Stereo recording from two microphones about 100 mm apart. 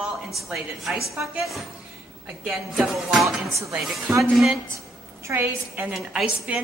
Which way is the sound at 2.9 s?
5° right (ahead or behind).